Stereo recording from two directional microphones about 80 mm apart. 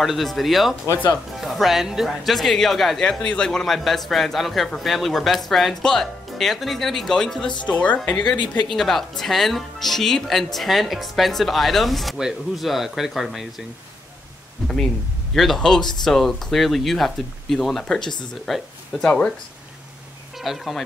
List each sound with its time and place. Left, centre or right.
0.0 s speech: centre
7.6 s speech: centre
8.1 s speech: centre
14.6 s speech: centre
20.4 s speech: centre